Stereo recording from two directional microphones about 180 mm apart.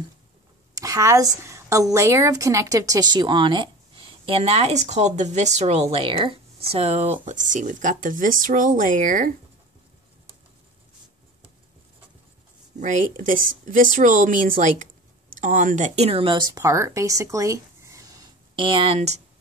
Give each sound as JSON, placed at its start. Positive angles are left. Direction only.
{"t": 0.7, "sound": "a woman's voice", "side_deg": -20}
{"t": 12.8, "sound": "speech", "side_deg": -45}